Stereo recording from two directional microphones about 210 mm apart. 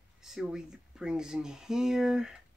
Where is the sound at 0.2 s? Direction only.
Centre (ahead or behind).